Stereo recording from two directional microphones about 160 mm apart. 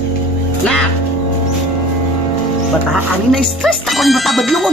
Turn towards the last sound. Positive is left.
turn(degrees=0)  # may be behind; listen again after turning